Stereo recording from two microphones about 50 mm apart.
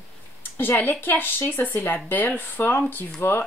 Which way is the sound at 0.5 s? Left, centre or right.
Left.